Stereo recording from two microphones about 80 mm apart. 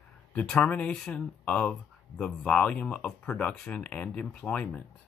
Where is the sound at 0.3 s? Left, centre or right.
Centre.